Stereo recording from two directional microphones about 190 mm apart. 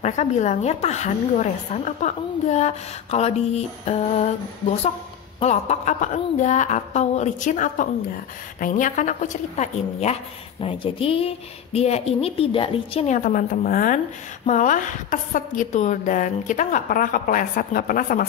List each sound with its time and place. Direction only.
0.0 s speech: 35° left (ahead or behind)
5.4 s speech: 35° left (ahead or behind)